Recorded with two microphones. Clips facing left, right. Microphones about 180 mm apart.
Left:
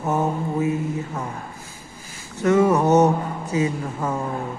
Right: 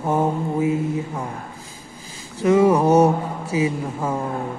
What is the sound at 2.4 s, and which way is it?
Speech, 10° right (ahead or behind).